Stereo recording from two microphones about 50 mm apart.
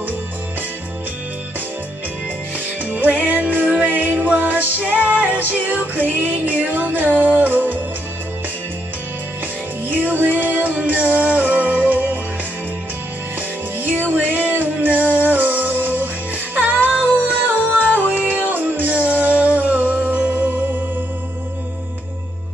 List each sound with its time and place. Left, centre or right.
2.8 s music: right
3.6 s music: right
3.9 s music: right
7.1 s music: left
7.3 s music: right
9.8 s music: right
13.7 s music: right
15.0 s music: left
15.2 s music: right
17.3 s music: right
17.8 s music: left
18.5 s music: right